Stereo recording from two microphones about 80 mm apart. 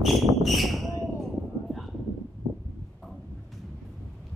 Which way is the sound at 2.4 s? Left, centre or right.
Right.